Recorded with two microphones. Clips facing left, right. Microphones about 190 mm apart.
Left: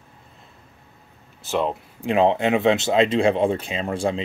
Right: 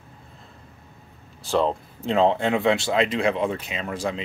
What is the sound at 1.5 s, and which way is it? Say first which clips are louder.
Speech: right 1 dB; 5° left (ahead or behind).